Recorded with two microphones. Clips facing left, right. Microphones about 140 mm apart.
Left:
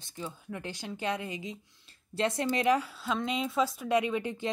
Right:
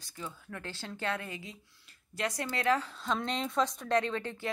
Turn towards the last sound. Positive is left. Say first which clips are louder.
# left 2 dB
turn(degrees=15)  # may be behind; listen again after turning